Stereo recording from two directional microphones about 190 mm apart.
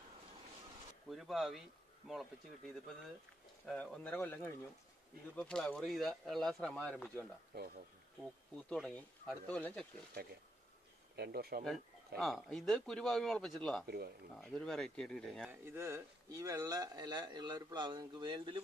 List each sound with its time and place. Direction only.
1.1 s speech: centre (ahead or behind)
3.6 s speech: 5° left (ahead or behind)
7.5 s speech: 50° right (ahead or behind)
8.2 s speech: 5° left (ahead or behind)
11.1 s speech: 55° right (ahead or behind)
12.2 s speech: centre (ahead or behind)
13.8 s speech: 55° right (ahead or behind)
14.4 s speech: 5° left (ahead or behind)
15.6 s speech: 15° right (ahead or behind)